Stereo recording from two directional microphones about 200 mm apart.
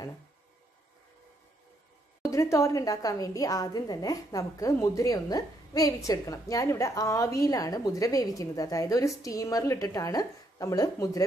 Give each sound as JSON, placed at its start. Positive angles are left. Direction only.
{"t": 2.2, "sound": "a woman's voice", "side_deg": 15}